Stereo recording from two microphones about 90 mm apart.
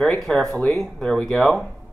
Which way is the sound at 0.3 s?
5° left (ahead or behind).